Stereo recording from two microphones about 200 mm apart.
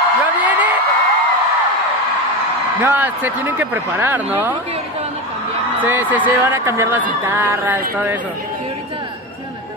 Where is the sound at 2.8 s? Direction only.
10° right (ahead or behind).